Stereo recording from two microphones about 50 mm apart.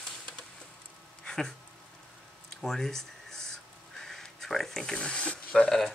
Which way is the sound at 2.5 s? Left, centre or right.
Centre.